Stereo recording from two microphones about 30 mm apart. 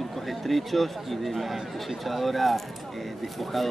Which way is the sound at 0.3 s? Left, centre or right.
Centre.